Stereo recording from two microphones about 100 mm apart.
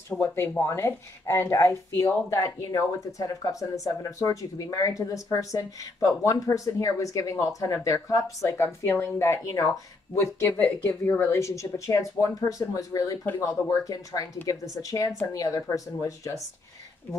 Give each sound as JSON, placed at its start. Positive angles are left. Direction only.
{"t": 0.4, "sound": "speech", "side_deg": 25}